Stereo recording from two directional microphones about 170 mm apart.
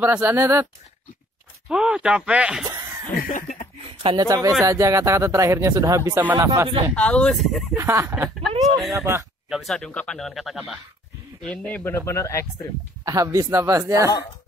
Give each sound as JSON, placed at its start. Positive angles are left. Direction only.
{"t": 0.0, "sound": "speech", "side_deg": -10}
{"t": 1.7, "sound": "speech", "side_deg": -5}
{"t": 3.2, "sound": "a sound", "side_deg": 55}
{"t": 4.0, "sound": "speech", "side_deg": -25}
{"t": 7.0, "sound": "speech", "side_deg": 5}
{"t": 7.7, "sound": "speech", "side_deg": -15}
{"t": 9.5, "sound": "speech", "side_deg": 0}
{"t": 13.0, "sound": "speech", "side_deg": -20}